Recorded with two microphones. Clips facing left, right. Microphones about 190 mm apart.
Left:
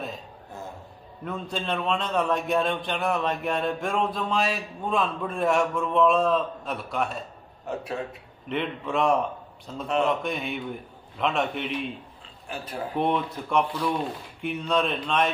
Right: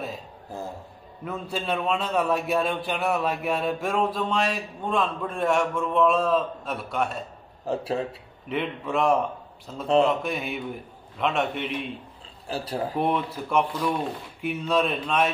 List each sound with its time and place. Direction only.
1.2 s a man's voice: 5° right (ahead or behind)
7.6 s a man's voice: 30° right (ahead or behind)
8.5 s a man's voice: centre (ahead or behind)
12.4 s a man's voice: 35° right (ahead or behind)
12.9 s a man's voice: 5° right (ahead or behind)